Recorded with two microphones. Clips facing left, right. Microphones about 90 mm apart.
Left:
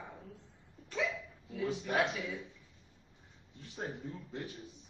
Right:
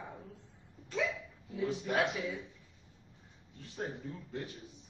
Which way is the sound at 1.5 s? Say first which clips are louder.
Even; 20° right (ahead or behind).